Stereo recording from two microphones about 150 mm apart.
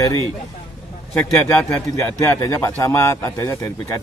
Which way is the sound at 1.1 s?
15° left (ahead or behind).